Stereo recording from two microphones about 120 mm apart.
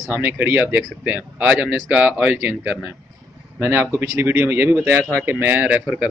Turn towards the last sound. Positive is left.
turn(degrees=-15)  # may be behind; listen again after turning